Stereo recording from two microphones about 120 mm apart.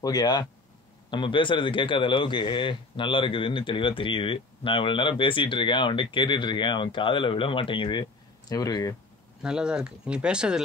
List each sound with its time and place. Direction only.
0.0 s speech: 35° left (ahead or behind)
9.4 s speech: 5° right (ahead or behind)